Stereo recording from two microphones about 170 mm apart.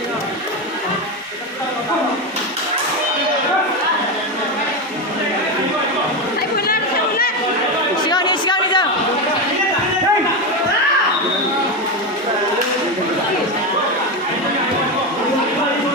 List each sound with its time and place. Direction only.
6.5 s chatter: 60° left (ahead or behind)
8.0 s chatter: 25° left (ahead or behind)